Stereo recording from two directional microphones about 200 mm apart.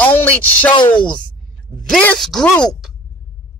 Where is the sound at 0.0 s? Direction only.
10° left (ahead or behind).